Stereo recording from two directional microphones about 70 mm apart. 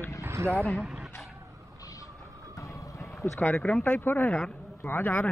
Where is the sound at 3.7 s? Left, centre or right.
Centre.